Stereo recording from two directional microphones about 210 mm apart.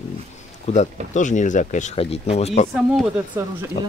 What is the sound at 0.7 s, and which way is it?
Speech, 30° left (ahead or behind).